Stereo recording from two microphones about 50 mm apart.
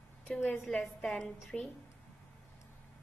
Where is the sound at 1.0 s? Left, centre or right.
Centre.